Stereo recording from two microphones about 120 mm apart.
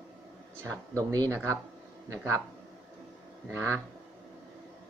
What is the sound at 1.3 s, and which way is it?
Speech, 20° right (ahead or behind).